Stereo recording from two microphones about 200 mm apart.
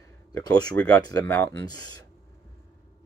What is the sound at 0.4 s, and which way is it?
Speech, 20° left (ahead or behind).